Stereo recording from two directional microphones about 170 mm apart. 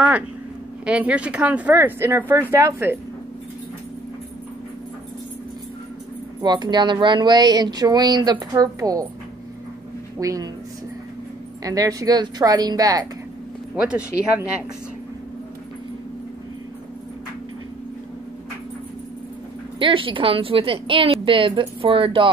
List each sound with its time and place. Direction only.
0.8 s speech: 5° right (ahead or behind)
6.4 s speech: 25° right (ahead or behind)
10.1 s speech: 20° right (ahead or behind)
11.6 s speech: 20° right (ahead or behind)
13.7 s speech: 5° right (ahead or behind)
19.8 s a woman's voice: 30° right (ahead or behind)